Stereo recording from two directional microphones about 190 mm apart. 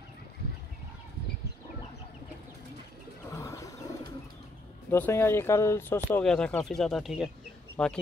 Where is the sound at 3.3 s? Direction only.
15° left (ahead or behind).